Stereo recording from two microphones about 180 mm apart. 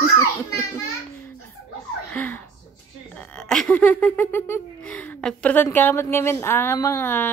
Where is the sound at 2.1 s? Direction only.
10° left (ahead or behind).